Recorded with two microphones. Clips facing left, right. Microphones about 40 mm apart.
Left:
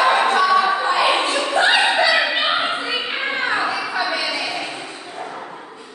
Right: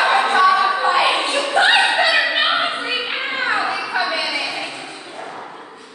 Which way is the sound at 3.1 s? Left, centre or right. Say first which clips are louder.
Even; centre.